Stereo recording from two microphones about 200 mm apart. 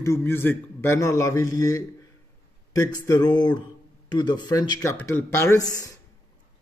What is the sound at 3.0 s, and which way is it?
Speech, 20° left (ahead or behind).